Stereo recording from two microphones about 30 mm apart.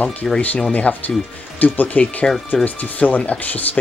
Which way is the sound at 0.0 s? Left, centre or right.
Left.